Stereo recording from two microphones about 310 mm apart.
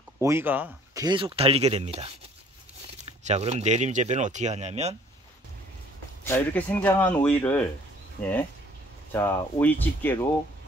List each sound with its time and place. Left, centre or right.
0.2 s speech: centre
6.2 s speech: centre
9.1 s speech: centre